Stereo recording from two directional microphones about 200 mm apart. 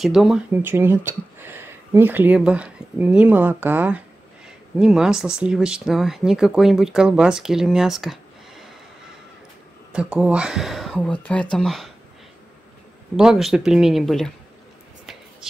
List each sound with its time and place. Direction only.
0.0 s speech: centre (ahead or behind)
9.9 s speech: 5° right (ahead or behind)
13.1 s speech: 5° right (ahead or behind)